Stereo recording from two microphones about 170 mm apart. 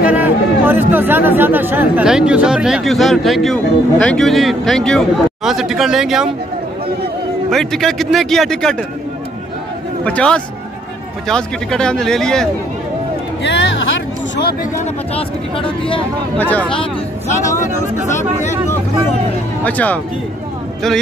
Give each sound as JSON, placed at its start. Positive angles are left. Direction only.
{"t": 0.0, "sound": "speech", "side_deg": -10}
{"t": 7.4, "sound": "speech", "side_deg": 0}
{"t": 10.0, "sound": "a man's voice", "side_deg": 5}
{"t": 13.4, "sound": "speech", "side_deg": 90}
{"t": 15.1, "sound": "speech", "side_deg": 30}
{"t": 16.3, "sound": "a man's voice", "side_deg": 10}
{"t": 17.4, "sound": "speech", "side_deg": 45}
{"t": 19.6, "sound": "a man's voice", "side_deg": 10}